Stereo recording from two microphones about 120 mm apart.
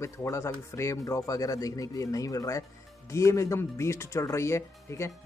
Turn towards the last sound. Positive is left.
turn(degrees=25)  # may be behind; listen again after turning